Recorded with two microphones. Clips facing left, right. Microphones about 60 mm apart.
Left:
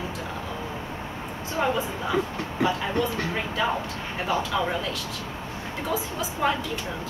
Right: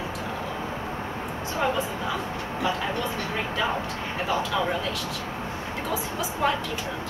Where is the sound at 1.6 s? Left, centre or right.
Centre.